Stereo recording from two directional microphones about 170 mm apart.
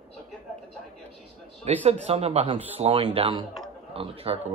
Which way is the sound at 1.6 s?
40° right (ahead or behind).